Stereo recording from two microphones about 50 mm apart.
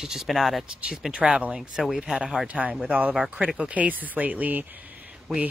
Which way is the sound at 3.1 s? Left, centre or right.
Centre.